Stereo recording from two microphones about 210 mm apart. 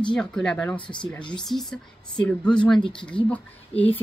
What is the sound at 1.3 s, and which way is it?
Speech, centre (ahead or behind).